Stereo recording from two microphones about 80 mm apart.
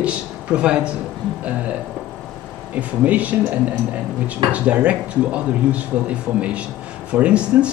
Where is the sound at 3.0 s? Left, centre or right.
Centre.